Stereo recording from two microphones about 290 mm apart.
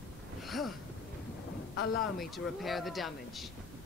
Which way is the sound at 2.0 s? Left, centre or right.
Centre.